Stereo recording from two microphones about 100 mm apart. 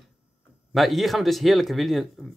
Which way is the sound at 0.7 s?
Centre (ahead or behind).